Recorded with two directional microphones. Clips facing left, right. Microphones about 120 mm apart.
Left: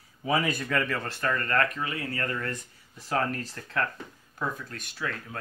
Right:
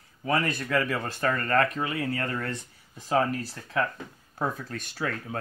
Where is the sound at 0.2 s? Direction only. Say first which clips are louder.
Even; 5° left (ahead or behind); by 2.5 s 25° right (ahead or behind).